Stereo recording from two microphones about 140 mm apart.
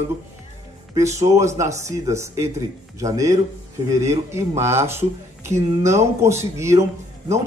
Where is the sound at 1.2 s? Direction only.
20° right (ahead or behind).